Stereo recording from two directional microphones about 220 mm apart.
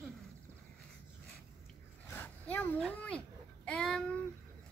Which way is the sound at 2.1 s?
5° left (ahead or behind).